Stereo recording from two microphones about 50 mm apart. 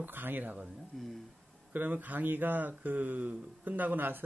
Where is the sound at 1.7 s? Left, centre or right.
Right.